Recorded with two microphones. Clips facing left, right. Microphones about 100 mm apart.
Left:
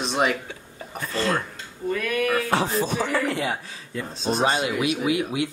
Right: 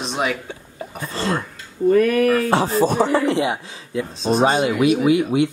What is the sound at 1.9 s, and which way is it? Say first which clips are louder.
Speech: right 9 dB; 45° right (ahead or behind).